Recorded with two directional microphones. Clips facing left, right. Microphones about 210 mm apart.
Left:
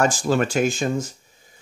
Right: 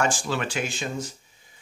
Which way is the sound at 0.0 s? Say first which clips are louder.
Left 6 dB; 40° left (ahead or behind).